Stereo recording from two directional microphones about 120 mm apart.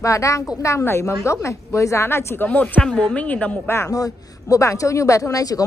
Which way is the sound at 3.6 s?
20° left (ahead or behind).